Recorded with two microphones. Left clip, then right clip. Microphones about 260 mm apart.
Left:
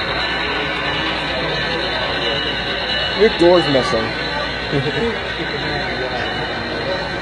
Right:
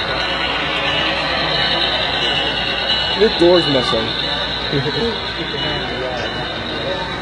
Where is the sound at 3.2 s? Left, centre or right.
Centre.